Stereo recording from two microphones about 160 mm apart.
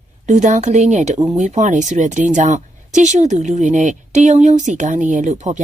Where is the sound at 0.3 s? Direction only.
45° right (ahead or behind).